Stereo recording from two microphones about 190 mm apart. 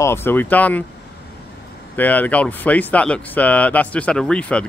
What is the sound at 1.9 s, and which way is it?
Speech, 10° left (ahead or behind).